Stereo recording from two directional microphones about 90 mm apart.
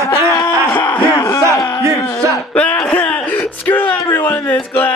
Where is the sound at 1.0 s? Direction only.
55° left (ahead or behind).